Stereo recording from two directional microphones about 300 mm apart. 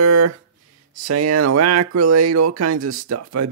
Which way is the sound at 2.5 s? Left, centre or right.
Right.